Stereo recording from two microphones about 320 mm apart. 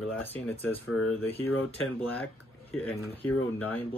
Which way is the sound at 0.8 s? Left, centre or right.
Left.